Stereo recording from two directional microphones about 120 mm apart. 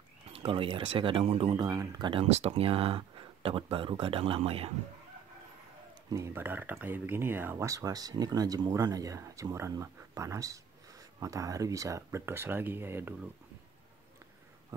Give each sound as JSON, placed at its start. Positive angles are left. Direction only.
{"t": 0.3, "sound": "speech", "side_deg": -50}
{"t": 1.6, "sound": "speech", "side_deg": -30}
{"t": 2.2, "sound": "speech", "side_deg": -60}
{"t": 6.1, "sound": "speech", "side_deg": -20}
{"t": 14.7, "sound": "a sound", "side_deg": -30}